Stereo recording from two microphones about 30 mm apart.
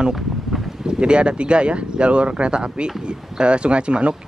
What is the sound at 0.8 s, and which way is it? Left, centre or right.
Speech, right.